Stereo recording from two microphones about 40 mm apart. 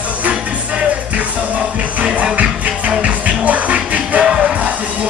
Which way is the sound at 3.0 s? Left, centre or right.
Right.